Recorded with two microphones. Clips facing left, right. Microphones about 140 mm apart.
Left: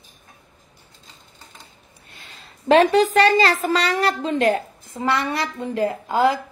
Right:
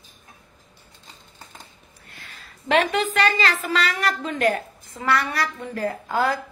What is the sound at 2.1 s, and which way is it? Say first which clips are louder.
A woman's voice: even; 25° left (ahead or behind).